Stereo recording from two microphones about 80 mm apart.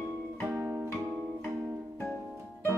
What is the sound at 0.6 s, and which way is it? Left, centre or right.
Music, right.